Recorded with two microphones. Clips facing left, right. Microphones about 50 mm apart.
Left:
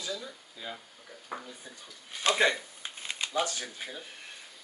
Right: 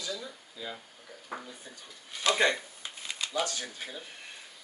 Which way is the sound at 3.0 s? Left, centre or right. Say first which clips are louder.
Left 1 dB; left.